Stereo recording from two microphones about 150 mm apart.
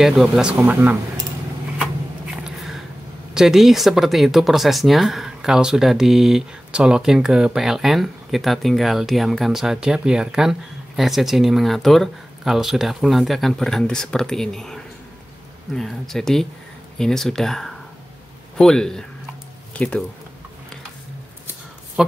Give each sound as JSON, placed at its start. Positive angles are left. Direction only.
{"t": 0.0, "sound": "speech", "side_deg": -5}
{"t": 2.4, "sound": "a sound", "side_deg": 0}
{"t": 3.3, "sound": "speech", "side_deg": 0}